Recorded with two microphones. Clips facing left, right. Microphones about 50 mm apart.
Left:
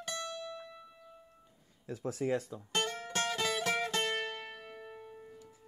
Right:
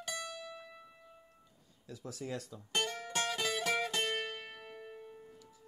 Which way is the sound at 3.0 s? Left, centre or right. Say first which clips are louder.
Left 2 dB; centre.